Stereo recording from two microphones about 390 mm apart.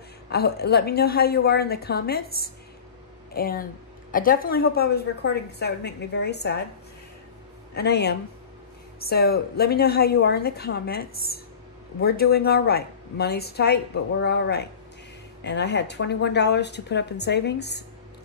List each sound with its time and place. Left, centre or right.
0.3 s a woman's voice: left
7.7 s a woman's voice: left